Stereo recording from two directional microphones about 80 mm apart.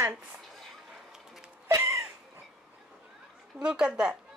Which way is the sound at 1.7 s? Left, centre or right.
Right.